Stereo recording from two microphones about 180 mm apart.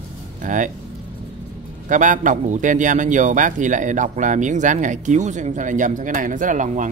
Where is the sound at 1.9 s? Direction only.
45° right (ahead or behind).